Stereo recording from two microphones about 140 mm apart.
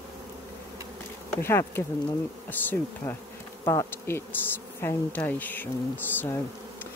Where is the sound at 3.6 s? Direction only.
20° left (ahead or behind).